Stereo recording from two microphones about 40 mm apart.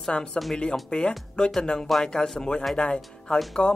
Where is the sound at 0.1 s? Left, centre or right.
Left.